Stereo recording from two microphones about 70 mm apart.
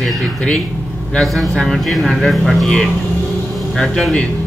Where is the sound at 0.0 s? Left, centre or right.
Centre.